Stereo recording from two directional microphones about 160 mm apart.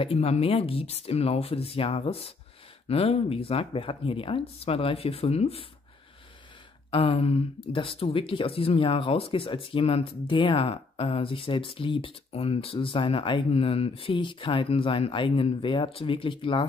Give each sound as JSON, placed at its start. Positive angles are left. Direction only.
{"t": 0.0, "sound": "speech", "side_deg": 40}
{"t": 6.9, "sound": "speech", "side_deg": 35}